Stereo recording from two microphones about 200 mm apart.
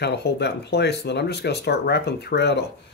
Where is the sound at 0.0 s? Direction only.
55° left (ahead or behind).